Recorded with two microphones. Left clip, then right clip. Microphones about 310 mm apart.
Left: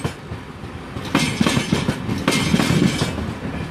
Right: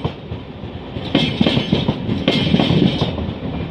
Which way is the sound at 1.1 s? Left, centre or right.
Left.